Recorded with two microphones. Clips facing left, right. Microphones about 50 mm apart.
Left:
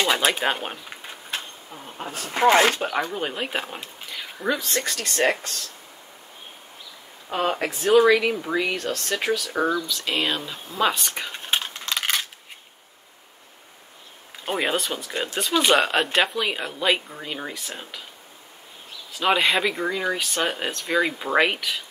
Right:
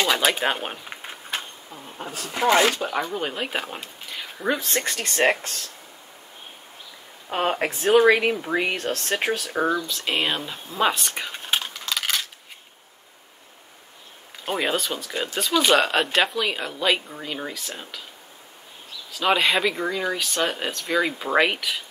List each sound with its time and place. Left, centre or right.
0.0 s a sound: centre
2.0 s speech: left
2.9 s speech: centre
4.6 s speech: right
7.2 s speech: centre
9.9 s speech: centre
14.4 s speech: centre
19.1 s speech: centre